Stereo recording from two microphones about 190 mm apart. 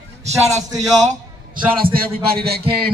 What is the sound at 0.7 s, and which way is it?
Speech, 20° right (ahead or behind).